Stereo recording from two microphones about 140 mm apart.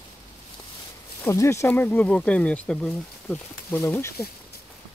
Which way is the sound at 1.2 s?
20° left (ahead or behind).